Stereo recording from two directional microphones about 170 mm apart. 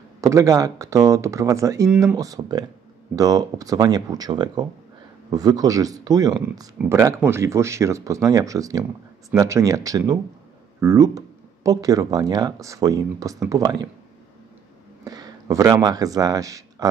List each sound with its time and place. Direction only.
0.2 s speech: 20° right (ahead or behind)
15.0 s speech: 20° right (ahead or behind)